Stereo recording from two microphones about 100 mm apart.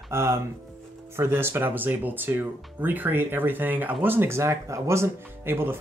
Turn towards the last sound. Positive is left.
turn(degrees=-25)  # may be behind; listen again after turning